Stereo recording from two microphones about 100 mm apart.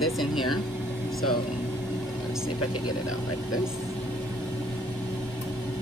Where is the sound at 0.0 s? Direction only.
Centre (ahead or behind).